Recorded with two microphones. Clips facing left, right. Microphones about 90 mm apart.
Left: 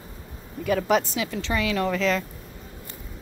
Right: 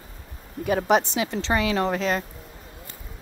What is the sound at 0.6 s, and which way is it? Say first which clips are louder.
Speech: right 1 dB; 35° right (ahead or behind).